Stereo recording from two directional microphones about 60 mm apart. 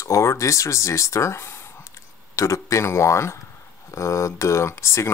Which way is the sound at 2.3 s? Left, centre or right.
Left.